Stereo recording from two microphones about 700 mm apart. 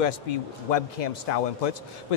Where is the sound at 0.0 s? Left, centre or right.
Left.